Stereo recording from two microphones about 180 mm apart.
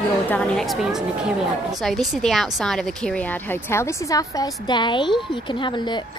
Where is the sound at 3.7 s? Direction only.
15° left (ahead or behind).